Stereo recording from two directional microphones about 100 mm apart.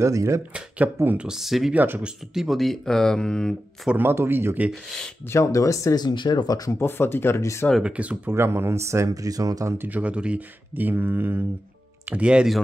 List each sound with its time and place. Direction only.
0.0 s speech: 30° right (ahead or behind)
0.5 s speech: 10° right (ahead or behind)
1.7 s speech: 15° right (ahead or behind)
2.3 s speech: centre (ahead or behind)
3.9 s speech: 20° right (ahead or behind)
5.3 s speech: 35° left (ahead or behind)
6.0 s speech: 45° left (ahead or behind)
6.8 s speech: 25° left (ahead or behind)
7.8 s speech: 15° right (ahead or behind)
8.4 s speech: 25° right (ahead or behind)
9.8 s speech: 15° right (ahead or behind)